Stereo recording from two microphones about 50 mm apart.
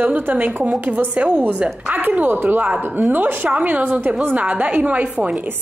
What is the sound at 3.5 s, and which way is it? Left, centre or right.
A woman's voice, right.